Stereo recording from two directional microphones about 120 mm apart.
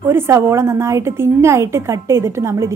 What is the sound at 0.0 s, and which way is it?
A woman's voice, 20° right (ahead or behind).